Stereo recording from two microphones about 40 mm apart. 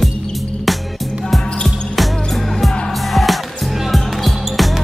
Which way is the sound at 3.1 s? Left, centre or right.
Centre.